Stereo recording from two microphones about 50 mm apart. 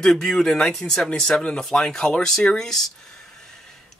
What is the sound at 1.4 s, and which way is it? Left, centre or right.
Speech, centre.